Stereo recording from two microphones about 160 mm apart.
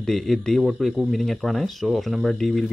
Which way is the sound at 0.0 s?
Centre (ahead or behind).